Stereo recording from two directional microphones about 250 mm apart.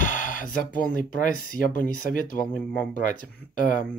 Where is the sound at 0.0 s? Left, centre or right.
Left.